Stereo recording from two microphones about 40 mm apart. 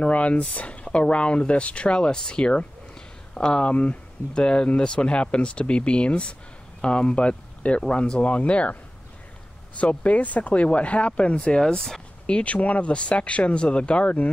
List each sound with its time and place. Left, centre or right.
0.0 s speech: left
9.8 s speech: left
12.4 s speech: left